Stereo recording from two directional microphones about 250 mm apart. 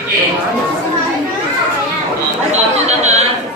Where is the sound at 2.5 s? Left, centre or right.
Right.